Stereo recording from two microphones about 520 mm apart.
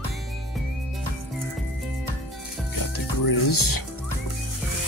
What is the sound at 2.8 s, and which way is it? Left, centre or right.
Music, left.